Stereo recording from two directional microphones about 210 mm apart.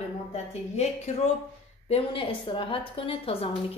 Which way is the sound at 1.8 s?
25° left (ahead or behind).